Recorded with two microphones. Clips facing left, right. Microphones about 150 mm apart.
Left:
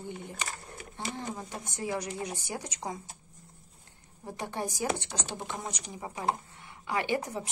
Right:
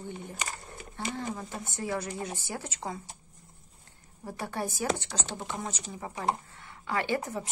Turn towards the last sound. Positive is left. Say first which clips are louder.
# even
turn(degrees=15)  # may be behind; listen again after turning